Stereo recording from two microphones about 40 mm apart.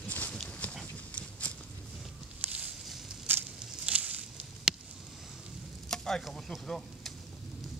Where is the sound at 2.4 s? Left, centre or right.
Right.